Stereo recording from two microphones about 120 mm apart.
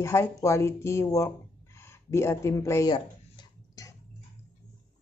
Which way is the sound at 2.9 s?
35° left (ahead or behind).